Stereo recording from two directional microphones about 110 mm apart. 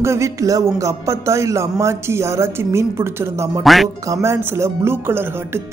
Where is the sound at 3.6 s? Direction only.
Centre (ahead or behind).